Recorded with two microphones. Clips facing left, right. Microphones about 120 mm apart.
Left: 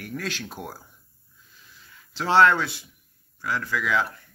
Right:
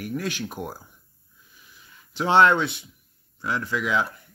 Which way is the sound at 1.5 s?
15° right (ahead or behind).